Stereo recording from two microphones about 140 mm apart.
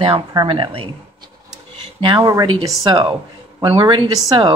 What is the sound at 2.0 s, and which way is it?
Speech, 35° right (ahead or behind).